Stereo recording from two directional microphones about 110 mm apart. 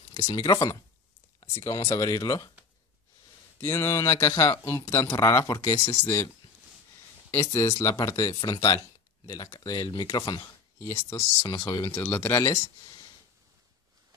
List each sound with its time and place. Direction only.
0.6 s speech: 30° left (ahead or behind)
3.6 s speech: 20° left (ahead or behind)
7.2 s speech: 30° left (ahead or behind)
10.8 s speech: 30° left (ahead or behind)
11.9 s speech: 20° left (ahead or behind)